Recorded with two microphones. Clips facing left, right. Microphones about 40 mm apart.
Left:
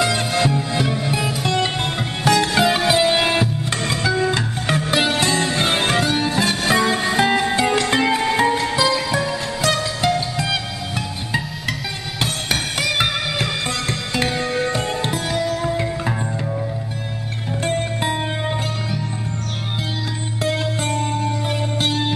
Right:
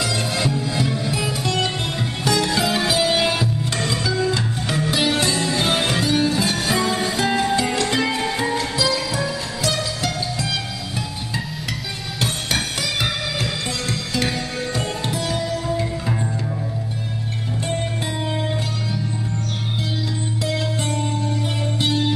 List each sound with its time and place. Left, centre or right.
0.0 s music: left
12.9 s music: left
20.4 s music: left